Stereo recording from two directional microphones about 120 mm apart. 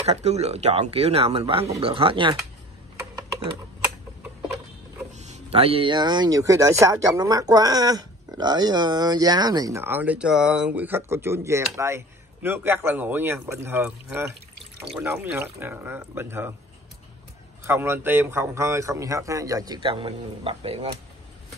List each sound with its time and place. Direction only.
0.0 s speech: 65° right (ahead or behind); by 2.3 s 45° right (ahead or behind)
5.1 s speech: 75° right (ahead or behind); by 9.8 s 35° right (ahead or behind)
9.8 s speech: 15° right (ahead or behind)
17.6 s speech: 20° right (ahead or behind)
19.8 s speech: 50° right (ahead or behind)